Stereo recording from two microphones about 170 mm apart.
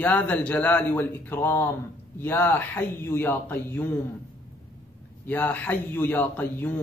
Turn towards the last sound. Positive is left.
turn(degrees=10)  # may be behind; listen again after turning